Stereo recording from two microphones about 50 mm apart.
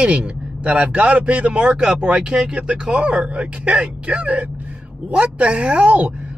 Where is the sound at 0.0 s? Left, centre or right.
Right.